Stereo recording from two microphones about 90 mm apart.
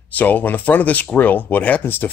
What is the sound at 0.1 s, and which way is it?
Speech, 20° left (ahead or behind).